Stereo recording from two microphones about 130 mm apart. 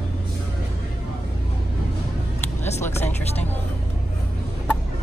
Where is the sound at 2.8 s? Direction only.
15° left (ahead or behind).